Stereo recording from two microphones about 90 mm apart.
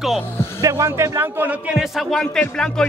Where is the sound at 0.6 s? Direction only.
35° right (ahead or behind).